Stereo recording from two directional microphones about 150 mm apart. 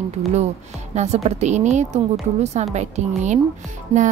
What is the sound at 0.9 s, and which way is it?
Speech, 45° right (ahead or behind).